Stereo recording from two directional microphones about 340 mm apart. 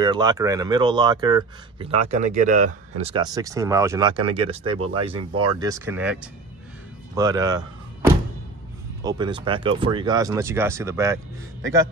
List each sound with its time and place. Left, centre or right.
0.0 s speech: centre
7.2 s speech: centre
9.0 s speech: centre